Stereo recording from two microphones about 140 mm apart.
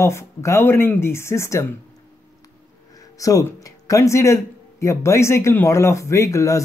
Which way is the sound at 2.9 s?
25° left (ahead or behind).